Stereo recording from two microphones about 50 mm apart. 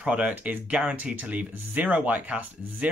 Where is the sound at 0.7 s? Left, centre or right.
Right.